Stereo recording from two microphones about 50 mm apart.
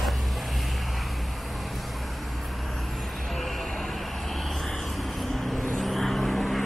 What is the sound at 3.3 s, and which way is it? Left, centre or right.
Vehicle, centre.